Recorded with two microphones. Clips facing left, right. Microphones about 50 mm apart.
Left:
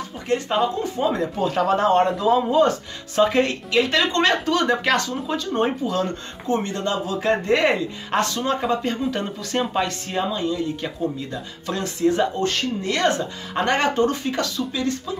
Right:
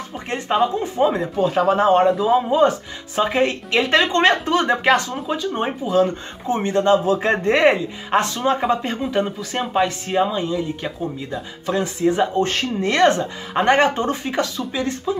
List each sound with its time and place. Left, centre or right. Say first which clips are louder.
0.3 s speech: right 2 dB; right
1.3 s speech: right 3 dB; centre
3.7 s speech: right 1 dB; right
7.7 s speech: right 3 dB; centre
12.4 s speech: right 2 dB; right